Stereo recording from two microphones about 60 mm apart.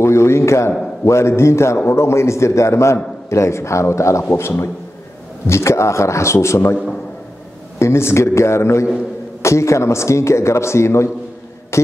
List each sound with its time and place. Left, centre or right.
0.0 s a man's voice: left
7.8 s a man's voice: left
11.7 s music: left